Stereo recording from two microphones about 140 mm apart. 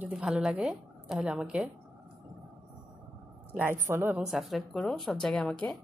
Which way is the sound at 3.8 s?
15° right (ahead or behind).